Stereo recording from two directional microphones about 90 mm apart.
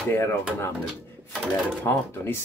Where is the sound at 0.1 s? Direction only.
25° left (ahead or behind).